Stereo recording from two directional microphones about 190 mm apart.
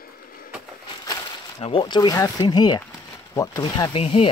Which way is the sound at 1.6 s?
25° left (ahead or behind).